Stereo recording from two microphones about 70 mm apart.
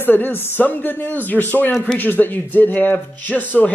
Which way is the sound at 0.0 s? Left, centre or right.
Left.